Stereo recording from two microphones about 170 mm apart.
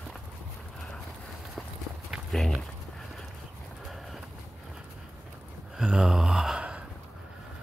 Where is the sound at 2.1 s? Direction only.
Centre (ahead or behind).